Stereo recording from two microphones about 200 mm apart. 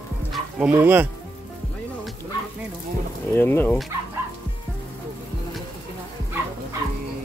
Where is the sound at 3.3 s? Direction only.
10° left (ahead or behind).